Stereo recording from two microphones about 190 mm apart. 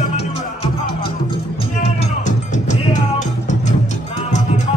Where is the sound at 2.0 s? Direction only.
40° left (ahead or behind).